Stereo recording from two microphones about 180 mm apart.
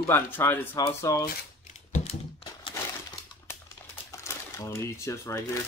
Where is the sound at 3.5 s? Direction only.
15° left (ahead or behind).